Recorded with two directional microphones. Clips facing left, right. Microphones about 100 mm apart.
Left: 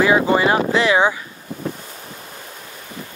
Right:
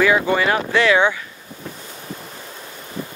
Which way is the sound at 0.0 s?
25° left (ahead or behind).